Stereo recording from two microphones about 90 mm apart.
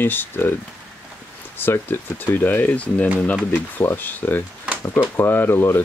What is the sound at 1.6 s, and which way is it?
Speech, 25° left (ahead or behind).